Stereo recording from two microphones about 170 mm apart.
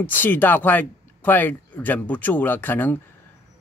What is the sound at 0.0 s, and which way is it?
Speech, 10° left (ahead or behind).